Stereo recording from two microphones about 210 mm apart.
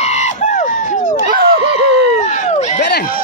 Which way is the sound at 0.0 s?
35° left (ahead or behind).